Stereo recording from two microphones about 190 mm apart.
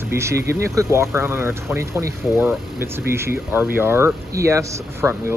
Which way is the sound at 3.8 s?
10° right (ahead or behind).